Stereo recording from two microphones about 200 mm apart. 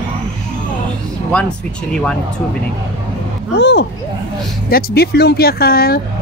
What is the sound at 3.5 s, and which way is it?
Speech, 60° left (ahead or behind).